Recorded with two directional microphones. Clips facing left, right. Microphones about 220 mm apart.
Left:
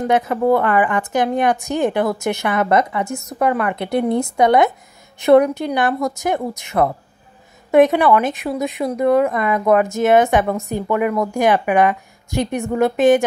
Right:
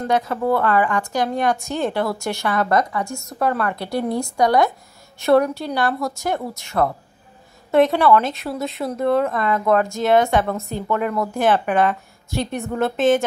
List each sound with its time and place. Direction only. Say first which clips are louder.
0.0 s a woman's voice: left 4 dB; 20° left (ahead or behind)